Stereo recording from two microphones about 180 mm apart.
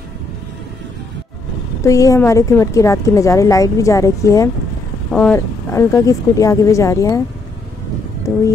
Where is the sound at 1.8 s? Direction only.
15° left (ahead or behind).